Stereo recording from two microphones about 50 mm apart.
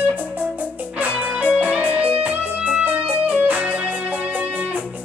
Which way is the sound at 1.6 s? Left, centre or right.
Right.